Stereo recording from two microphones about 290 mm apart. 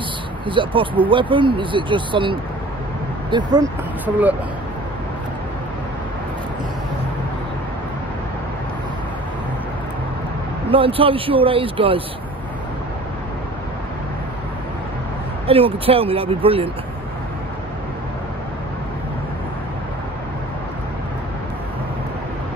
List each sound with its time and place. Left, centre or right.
0.5 s a man's voice: centre
10.7 s a man's voice: centre
15.4 s speech: centre